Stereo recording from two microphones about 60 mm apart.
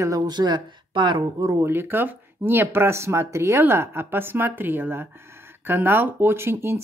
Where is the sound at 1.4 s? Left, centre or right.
Right.